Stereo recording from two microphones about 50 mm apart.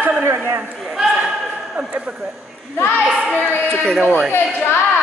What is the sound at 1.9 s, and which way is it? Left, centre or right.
Speech, right.